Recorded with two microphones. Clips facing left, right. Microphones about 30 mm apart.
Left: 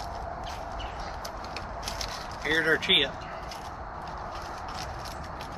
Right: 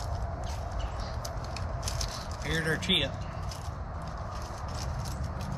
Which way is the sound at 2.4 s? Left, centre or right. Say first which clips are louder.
Left 6 dB; left.